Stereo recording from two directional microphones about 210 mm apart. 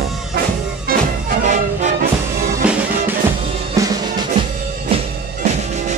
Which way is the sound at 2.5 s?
10° right (ahead or behind).